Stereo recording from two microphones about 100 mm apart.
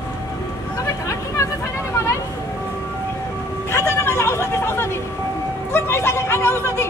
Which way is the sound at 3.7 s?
25° left (ahead or behind).